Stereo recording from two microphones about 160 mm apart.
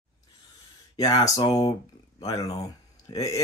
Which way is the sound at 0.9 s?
25° left (ahead or behind).